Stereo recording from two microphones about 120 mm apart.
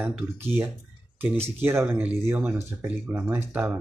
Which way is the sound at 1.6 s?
20° right (ahead or behind).